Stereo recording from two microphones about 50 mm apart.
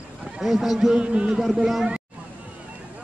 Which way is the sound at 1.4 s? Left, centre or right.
Centre.